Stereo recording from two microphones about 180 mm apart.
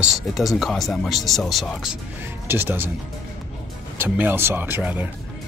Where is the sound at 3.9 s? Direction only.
10° right (ahead or behind).